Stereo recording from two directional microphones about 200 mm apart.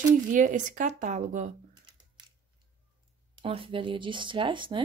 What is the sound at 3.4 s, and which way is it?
Speech, 25° right (ahead or behind).